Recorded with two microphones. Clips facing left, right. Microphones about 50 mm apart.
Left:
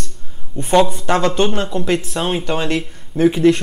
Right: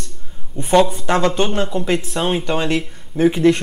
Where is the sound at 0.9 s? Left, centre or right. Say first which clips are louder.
Even; right.